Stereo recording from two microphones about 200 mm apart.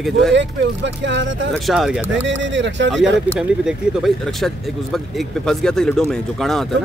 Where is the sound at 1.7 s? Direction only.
Centre (ahead or behind).